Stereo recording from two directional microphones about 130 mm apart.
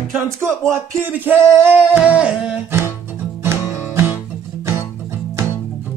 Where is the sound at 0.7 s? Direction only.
15° right (ahead or behind).